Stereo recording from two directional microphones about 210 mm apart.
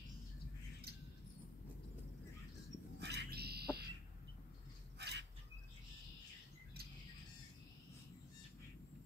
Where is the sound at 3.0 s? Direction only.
50° right (ahead or behind).